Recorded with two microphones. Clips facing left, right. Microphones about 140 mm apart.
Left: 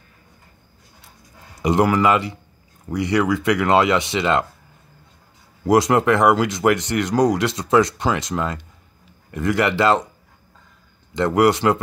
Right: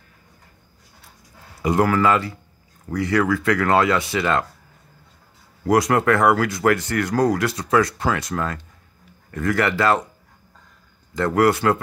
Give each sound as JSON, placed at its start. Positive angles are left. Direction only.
{"t": 1.6, "sound": "speech", "side_deg": 20}
{"t": 5.7, "sound": "speech", "side_deg": 20}
{"t": 11.1, "sound": "speech", "side_deg": 20}